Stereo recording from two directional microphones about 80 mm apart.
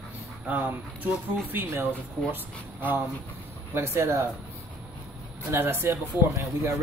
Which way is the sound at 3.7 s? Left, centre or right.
Right.